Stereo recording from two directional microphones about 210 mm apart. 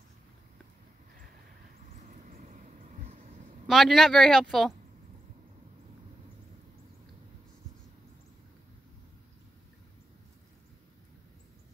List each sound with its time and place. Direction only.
2.0 s vehicle: 35° right (ahead or behind)
3.6 s speech: centre (ahead or behind)